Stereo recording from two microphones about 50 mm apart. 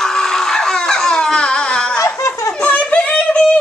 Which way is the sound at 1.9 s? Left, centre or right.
Left.